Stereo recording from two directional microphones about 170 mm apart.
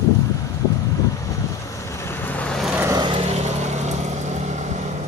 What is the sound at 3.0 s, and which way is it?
Vehicle, 35° right (ahead or behind).